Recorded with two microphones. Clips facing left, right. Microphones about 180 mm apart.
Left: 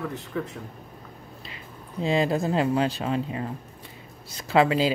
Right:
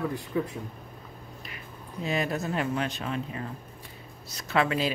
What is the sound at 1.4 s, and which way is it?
Speech, 25° left (ahead or behind).